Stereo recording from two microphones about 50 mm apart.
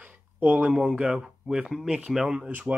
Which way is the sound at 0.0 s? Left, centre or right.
Right.